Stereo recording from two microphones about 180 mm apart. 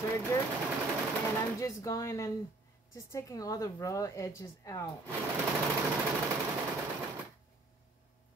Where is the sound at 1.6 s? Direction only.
15° left (ahead or behind).